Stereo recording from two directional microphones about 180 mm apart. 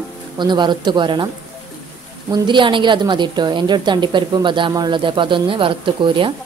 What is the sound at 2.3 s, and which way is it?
A woman's voice, 25° right (ahead or behind).